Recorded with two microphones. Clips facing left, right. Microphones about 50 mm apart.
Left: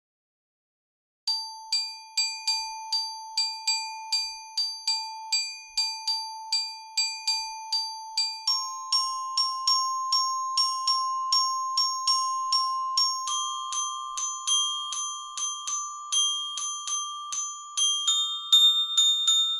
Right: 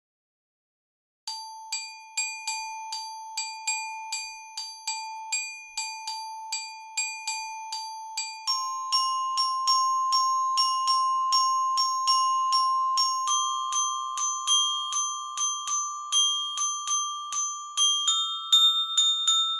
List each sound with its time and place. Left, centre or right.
1.2 s ding: right
4.6 s a sound: right
6.1 s ding: centre
8.2 s music: right
9.5 s marimba: right
10.2 s glockenspiel: right
13.4 s glockenspiel: right
13.8 s marimba: right
17.7 s glockenspiel: right
18.5 s marimba: right